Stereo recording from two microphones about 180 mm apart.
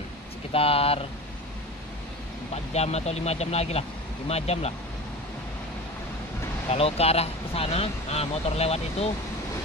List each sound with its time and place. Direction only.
0.5 s speech: 30° left (ahead or behind)
2.5 s speech: 35° left (ahead or behind)
6.7 s speech: 35° left (ahead or behind)